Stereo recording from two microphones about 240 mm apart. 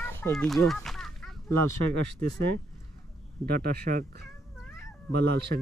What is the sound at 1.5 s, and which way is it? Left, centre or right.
Speech, right.